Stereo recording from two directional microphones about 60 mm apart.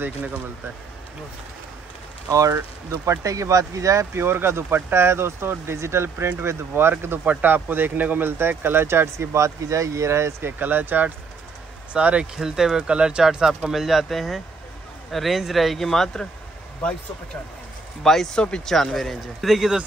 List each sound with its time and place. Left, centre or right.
2.2 s speech: right
4.1 s speech: right
6.0 s speech: right
6.4 s speech: right
7.2 s speech: right
10.4 s speech: right
11.9 s speech: right
12.4 s speech: centre
18.0 s speech: centre